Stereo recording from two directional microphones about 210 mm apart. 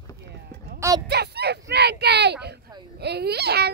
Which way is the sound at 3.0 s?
50° right (ahead or behind).